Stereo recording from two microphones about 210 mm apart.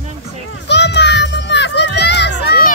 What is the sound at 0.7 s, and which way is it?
Children playing, 55° left (ahead or behind).